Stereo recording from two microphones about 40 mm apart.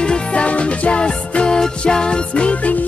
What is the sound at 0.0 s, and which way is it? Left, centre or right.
Music, left.